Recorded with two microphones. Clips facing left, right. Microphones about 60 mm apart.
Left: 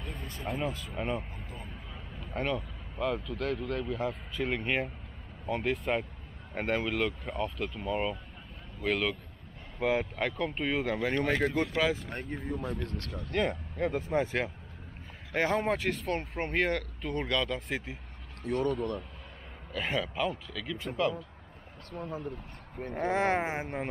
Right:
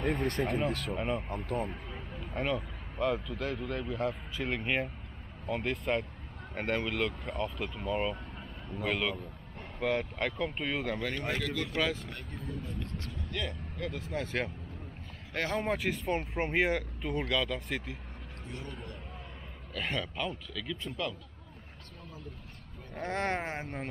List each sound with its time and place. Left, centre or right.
0.0 s speech: right
0.9 s speech: centre
1.3 s speech: right
2.1 s speech: centre
11.1 s speech: left
11.7 s speech: centre
12.1 s speech: left
15.5 s speech: centre
16.1 s speech: centre
18.4 s speech: left
19.7 s speech: centre
21.9 s speech: left
22.9 s speech: centre